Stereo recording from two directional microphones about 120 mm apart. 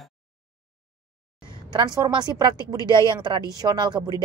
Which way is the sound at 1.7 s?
35° right (ahead or behind).